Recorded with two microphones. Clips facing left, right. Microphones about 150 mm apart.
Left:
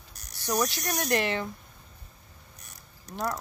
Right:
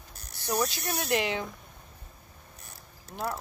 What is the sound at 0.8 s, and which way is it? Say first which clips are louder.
Speech: left 2 dB; 15° left (ahead or behind).